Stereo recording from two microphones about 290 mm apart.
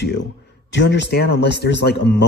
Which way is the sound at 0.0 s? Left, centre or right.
Left.